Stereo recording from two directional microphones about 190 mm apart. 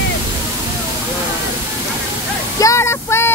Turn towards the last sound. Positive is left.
turn(degrees=15)  # may be behind; listen again after turning